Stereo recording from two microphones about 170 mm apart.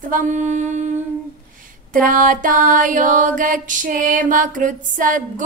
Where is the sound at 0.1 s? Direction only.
50° right (ahead or behind).